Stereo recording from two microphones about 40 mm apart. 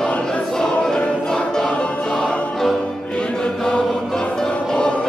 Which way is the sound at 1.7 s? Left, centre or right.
Left.